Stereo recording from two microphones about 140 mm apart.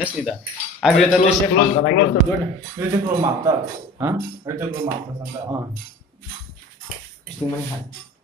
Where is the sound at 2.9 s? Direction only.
25° right (ahead or behind).